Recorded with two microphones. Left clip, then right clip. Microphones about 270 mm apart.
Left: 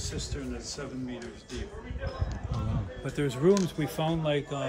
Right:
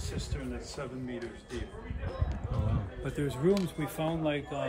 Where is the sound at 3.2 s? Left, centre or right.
Centre.